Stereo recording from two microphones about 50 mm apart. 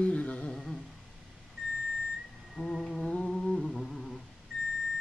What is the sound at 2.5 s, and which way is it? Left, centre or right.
Humming, centre.